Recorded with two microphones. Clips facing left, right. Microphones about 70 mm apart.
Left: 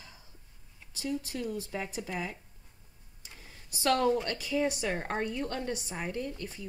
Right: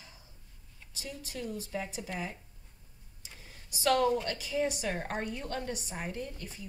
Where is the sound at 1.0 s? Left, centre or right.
Left.